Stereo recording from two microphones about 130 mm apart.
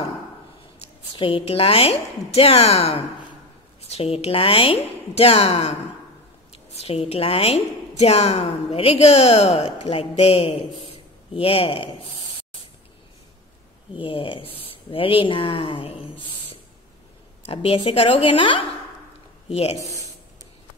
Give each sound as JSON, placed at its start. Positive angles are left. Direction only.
{"t": 1.1, "sound": "a woman's voice", "side_deg": 45}
{"t": 13.9, "sound": "speech", "side_deg": 45}
{"t": 17.5, "sound": "speech", "side_deg": 45}
{"t": 19.5, "sound": "speech", "side_deg": 50}